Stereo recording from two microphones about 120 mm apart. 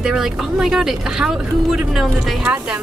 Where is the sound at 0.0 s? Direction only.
5° right (ahead or behind).